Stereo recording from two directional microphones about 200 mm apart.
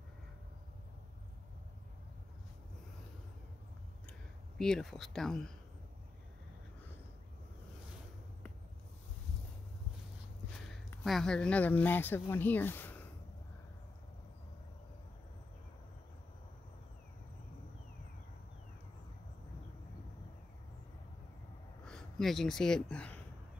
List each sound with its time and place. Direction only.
4.6 s speech: 5° left (ahead or behind)
11.1 s speech: centre (ahead or behind)
21.8 s speech: centre (ahead or behind)